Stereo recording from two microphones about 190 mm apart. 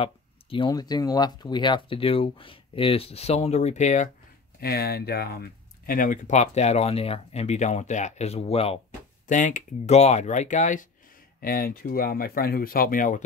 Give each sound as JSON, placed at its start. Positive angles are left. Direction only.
{"t": 0.0, "sound": "speech", "side_deg": 25}
{"t": 4.6, "sound": "speech", "side_deg": 55}